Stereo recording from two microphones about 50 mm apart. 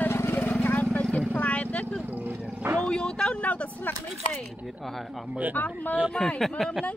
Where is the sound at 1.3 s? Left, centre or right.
Left.